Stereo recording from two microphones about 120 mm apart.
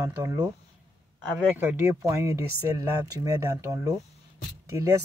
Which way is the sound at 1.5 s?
15° right (ahead or behind).